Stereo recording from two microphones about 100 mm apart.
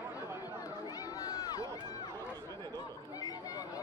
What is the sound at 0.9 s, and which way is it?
Run, 35° left (ahead or behind).